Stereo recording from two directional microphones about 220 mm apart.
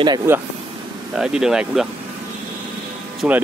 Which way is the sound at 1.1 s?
5° right (ahead or behind).